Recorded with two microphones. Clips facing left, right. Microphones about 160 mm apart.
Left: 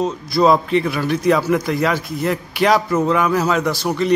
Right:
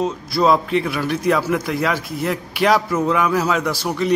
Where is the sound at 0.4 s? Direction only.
Centre (ahead or behind).